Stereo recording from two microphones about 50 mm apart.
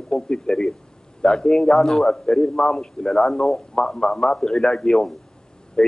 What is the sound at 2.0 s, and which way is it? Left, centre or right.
A man's voice, centre.